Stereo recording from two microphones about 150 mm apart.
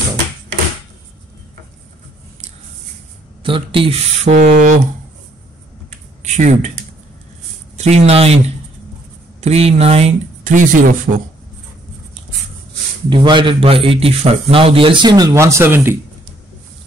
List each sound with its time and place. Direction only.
3.4 s speech: 35° right (ahead or behind); by 4.8 s 55° right (ahead or behind)
6.2 s speech: 50° right (ahead or behind)
7.7 s speech: 50° right (ahead or behind)
9.4 s speech: 45° right (ahead or behind); by 11.1 s 60° right (ahead or behind)
13.1 s a man's voice: 30° right (ahead or behind); by 16.0 s 15° right (ahead or behind)